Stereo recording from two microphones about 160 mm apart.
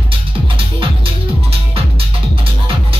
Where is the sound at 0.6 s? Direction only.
35° right (ahead or behind).